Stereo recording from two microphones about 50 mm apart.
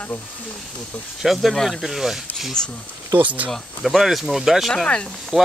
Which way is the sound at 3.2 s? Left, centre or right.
Right.